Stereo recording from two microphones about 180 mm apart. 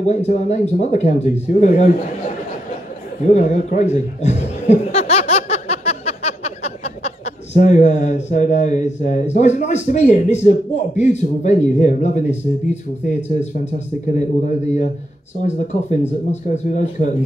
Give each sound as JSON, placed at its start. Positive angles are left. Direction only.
{"t": 0.0, "sound": "a man's voice", "side_deg": 40}
{"t": 3.3, "sound": "a man's voice", "side_deg": 40}